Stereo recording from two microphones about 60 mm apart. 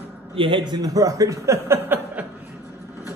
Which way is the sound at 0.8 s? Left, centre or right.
Right.